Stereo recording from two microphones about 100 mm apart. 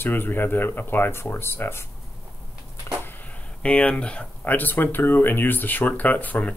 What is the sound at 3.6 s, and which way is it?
Speech, 15° left (ahead or behind).